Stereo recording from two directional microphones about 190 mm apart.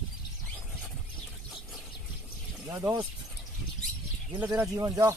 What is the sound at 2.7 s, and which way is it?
Speech, 20° right (ahead or behind).